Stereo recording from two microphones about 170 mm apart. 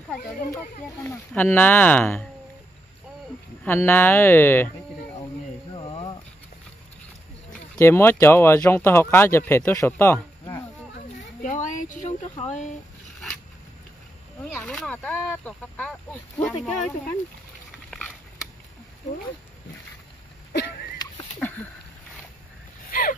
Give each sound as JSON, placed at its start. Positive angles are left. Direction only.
{"t": 1.0, "sound": "speech", "side_deg": 15}
{"t": 3.6, "sound": "speech", "side_deg": 10}
{"t": 5.7, "sound": "a sound", "side_deg": 25}
{"t": 7.8, "sound": "speech", "side_deg": 15}
{"t": 11.1, "sound": "a sound", "side_deg": 45}
{"t": 12.4, "sound": "speech", "side_deg": 40}
{"t": 14.4, "sound": "speech", "side_deg": 10}
{"t": 21.4, "sound": "a sound", "side_deg": 10}
{"t": 22.8, "sound": "boat", "side_deg": 55}